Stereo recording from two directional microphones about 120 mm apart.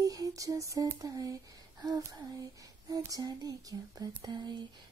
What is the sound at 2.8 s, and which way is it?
Lullaby, 30° right (ahead or behind).